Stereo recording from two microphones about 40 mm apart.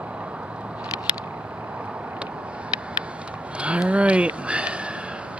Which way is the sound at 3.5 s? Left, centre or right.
Right.